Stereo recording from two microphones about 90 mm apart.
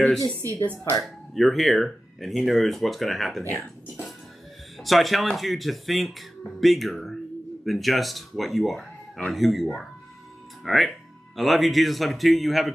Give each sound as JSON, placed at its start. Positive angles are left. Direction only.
{"t": 0.0, "sound": "speech", "side_deg": 5}
{"t": 0.6, "sound": "a woman's voice", "side_deg": 20}
{"t": 1.0, "sound": "speech", "side_deg": 0}
{"t": 4.7, "sound": "speech", "side_deg": 0}